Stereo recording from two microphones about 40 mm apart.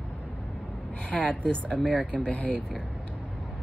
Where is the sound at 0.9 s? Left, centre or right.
Left.